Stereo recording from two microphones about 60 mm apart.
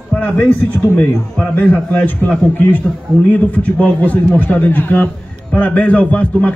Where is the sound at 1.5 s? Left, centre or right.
Left.